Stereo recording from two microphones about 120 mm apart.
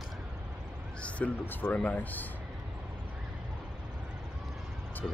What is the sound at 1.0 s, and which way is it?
Speech, 15° left (ahead or behind).